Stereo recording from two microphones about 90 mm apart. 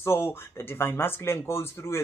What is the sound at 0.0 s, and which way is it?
Speech, 25° left (ahead or behind).